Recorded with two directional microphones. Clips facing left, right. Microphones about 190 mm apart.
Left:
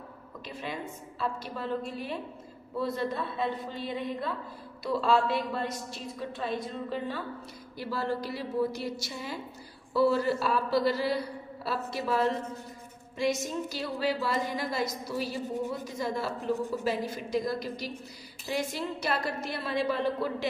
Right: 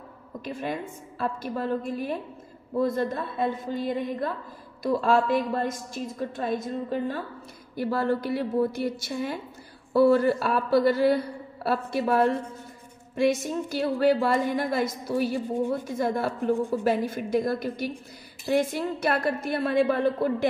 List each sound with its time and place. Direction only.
0.5 s a woman's voice: 50° right (ahead or behind)